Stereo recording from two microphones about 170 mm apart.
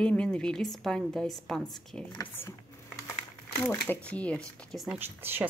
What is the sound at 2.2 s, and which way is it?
Speech, 10° left (ahead or behind).